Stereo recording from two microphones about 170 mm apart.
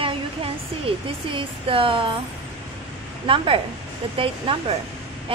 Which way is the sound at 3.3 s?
35° right (ahead or behind).